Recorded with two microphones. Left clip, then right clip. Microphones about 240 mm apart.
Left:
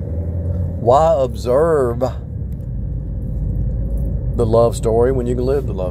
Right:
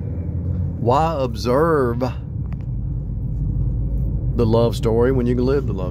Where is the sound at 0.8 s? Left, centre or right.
Centre.